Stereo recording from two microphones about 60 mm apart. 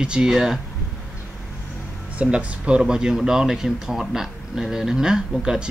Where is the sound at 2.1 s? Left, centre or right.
Centre.